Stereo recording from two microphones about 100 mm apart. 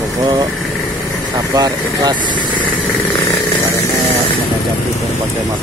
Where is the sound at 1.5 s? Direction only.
45° right (ahead or behind).